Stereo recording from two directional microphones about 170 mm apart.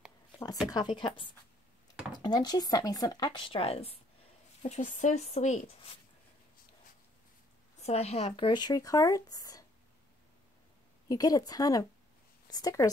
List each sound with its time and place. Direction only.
0.7 s speech: 25° left (ahead or behind)
4.6 s speech: 45° left (ahead or behind)
7.8 s speech: 40° left (ahead or behind); by 9.7 s 20° left (ahead or behind)
11.1 s speech: 20° left (ahead or behind)